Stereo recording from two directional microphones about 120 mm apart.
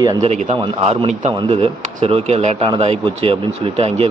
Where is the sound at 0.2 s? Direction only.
65° right (ahead or behind).